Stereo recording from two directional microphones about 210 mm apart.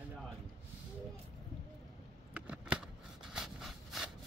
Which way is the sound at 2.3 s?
5° right (ahead or behind).